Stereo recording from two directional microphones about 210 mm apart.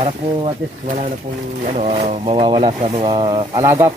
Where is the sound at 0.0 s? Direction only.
25° right (ahead or behind).